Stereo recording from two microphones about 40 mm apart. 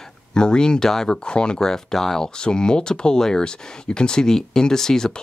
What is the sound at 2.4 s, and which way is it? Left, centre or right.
Speech, left.